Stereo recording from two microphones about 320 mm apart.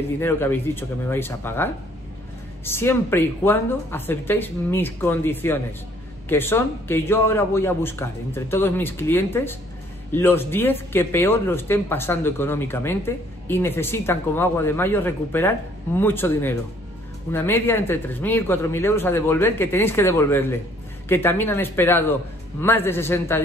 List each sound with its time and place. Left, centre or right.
0.2 s speech: centre